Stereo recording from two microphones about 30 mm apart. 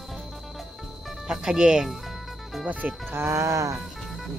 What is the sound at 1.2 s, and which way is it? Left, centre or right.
Speech, right.